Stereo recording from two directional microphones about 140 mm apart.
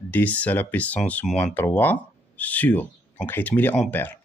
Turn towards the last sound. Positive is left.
turn(degrees=10)  # may be behind; listen again after turning